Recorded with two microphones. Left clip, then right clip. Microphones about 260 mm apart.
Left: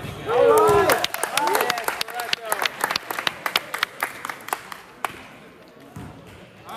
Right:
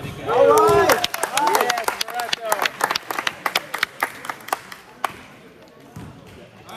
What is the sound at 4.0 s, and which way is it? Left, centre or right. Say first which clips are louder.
Clapping: right 3 dB; right.